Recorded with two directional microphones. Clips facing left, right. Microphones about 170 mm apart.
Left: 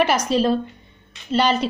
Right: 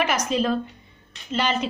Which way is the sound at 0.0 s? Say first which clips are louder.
Left 4 dB; 35° left (ahead or behind).